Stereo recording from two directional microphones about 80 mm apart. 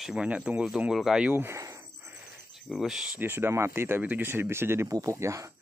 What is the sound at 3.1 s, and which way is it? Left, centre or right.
Speech, right.